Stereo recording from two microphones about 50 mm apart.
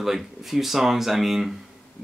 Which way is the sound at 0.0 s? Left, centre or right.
Centre.